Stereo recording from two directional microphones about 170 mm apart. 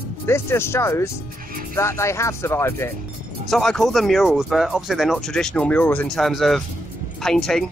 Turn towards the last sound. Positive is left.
turn(degrees=5)  # may be behind; listen again after turning